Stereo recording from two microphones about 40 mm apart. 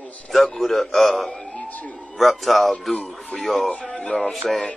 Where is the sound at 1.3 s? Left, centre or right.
Left.